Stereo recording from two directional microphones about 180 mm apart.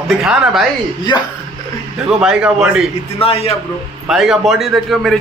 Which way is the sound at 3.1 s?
35° left (ahead or behind).